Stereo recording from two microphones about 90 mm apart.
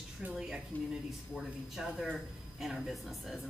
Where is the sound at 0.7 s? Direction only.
15° left (ahead or behind).